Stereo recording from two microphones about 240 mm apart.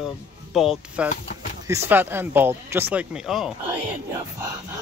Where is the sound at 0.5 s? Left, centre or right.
Centre.